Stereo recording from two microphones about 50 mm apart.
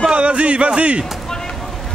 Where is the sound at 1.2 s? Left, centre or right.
Centre.